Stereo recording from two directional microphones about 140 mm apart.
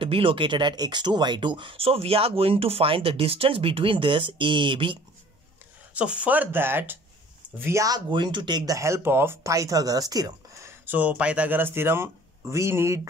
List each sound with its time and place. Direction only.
0.0 s speech: 40° right (ahead or behind)
5.9 s speech: 10° right (ahead or behind)